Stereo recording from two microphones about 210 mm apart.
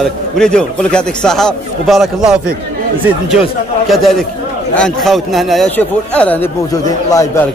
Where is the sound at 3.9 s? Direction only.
Centre (ahead or behind).